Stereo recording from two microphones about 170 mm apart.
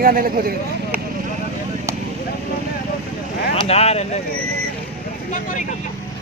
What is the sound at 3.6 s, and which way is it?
Speech, 35° left (ahead or behind).